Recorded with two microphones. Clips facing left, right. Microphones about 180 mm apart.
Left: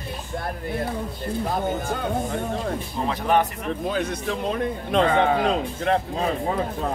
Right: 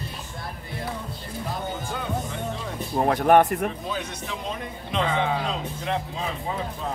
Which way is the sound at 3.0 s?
55° right (ahead or behind).